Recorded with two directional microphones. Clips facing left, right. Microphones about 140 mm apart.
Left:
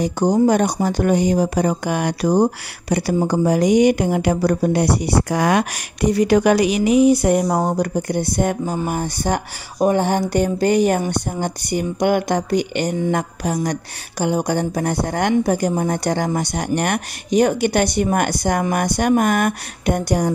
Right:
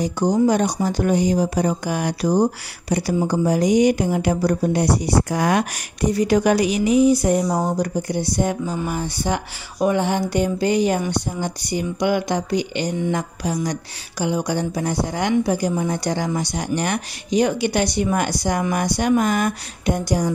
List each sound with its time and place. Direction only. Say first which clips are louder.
0.0 s speech: left 2 dB; 55° left (ahead or behind)